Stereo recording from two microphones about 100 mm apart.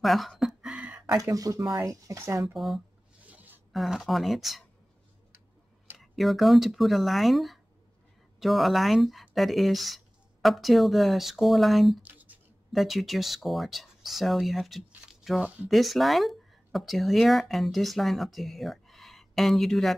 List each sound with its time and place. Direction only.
0.0 s a sound: centre (ahead or behind)
1.1 s speech: 35° right (ahead or behind)
2.4 s speech: 5° right (ahead or behind)
3.3 s a sound: 20° right (ahead or behind)
3.7 s speech: centre (ahead or behind)
5.9 s speech: centre (ahead or behind)
12.0 s writing: 15° right (ahead or behind)
12.7 s speech: centre (ahead or behind)
15.0 s a sound: 5° right (ahead or behind)
15.7 s speech: centre (ahead or behind)